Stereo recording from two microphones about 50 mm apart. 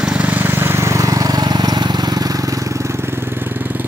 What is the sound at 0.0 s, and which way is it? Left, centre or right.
Vehicle, right.